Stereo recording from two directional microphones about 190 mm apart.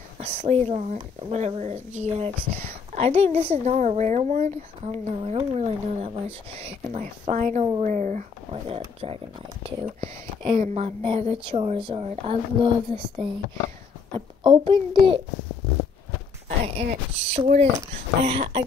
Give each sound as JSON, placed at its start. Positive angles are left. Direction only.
{"t": 0.2, "sound": "speech", "side_deg": -35}
{"t": 2.5, "sound": "a sound", "side_deg": -50}
{"t": 3.0, "sound": "speech", "side_deg": -35}
{"t": 16.4, "sound": "speech", "side_deg": -35}